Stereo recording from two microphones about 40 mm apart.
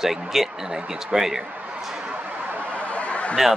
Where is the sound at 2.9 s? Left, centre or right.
Left.